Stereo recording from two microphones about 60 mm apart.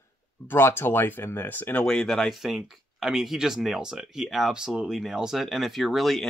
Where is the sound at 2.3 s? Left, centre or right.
Centre.